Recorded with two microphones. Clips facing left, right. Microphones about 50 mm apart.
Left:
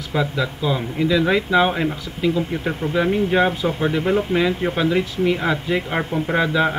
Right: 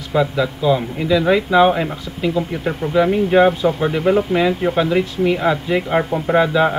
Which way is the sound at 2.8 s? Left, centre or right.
Right.